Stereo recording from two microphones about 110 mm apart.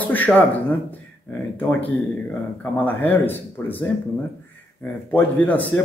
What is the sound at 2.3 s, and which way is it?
Speech, 15° left (ahead or behind).